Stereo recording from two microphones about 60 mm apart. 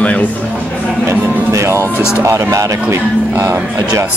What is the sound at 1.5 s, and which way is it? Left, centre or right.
Music, right.